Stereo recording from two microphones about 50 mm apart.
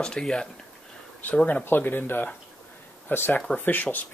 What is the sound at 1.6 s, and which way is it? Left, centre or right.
Speech, left.